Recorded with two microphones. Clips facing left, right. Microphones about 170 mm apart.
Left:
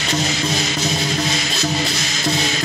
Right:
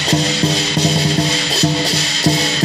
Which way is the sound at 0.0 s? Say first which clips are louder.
Right 5 dB; 35° right (ahead or behind).